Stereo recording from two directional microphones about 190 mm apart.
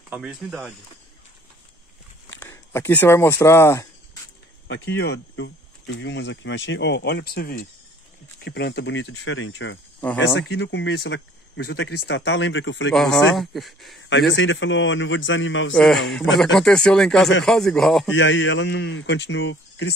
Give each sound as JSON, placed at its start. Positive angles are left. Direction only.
{"t": 0.1, "sound": "a man's voice", "side_deg": -5}
{"t": 2.3, "sound": "speech", "side_deg": 15}
{"t": 4.6, "sound": "speech", "side_deg": 70}
{"t": 10.1, "sound": "speech", "side_deg": 65}
{"t": 12.9, "sound": "a man's voice", "side_deg": 0}
{"t": 14.3, "sound": "a man's voice", "side_deg": 85}
{"t": 15.7, "sound": "a man's voice", "side_deg": 0}
{"t": 16.0, "sound": "speech", "side_deg": 65}
{"t": 16.5, "sound": "a man's voice", "side_deg": 5}
{"t": 18.1, "sound": "speech", "side_deg": 80}